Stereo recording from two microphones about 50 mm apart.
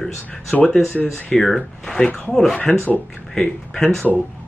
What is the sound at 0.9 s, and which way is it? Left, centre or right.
Speech, left.